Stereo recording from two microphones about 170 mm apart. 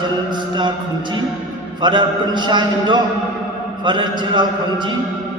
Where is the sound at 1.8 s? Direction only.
25° right (ahead or behind).